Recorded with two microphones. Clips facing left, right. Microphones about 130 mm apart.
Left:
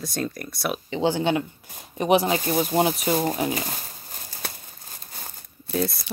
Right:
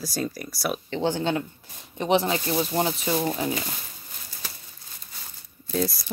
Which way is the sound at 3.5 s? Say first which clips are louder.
Left 2 dB; 40° left (ahead or behind).